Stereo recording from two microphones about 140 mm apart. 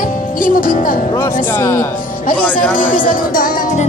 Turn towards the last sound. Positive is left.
turn(degrees=80)